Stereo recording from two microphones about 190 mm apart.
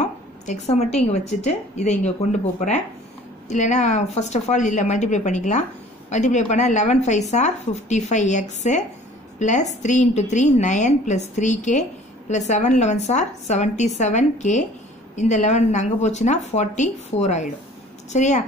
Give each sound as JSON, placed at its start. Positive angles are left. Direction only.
{"t": 0.0, "sound": "a sound", "side_deg": 35}
{"t": 0.9, "sound": "speech", "side_deg": 35}
{"t": 3.4, "sound": "speech", "side_deg": 40}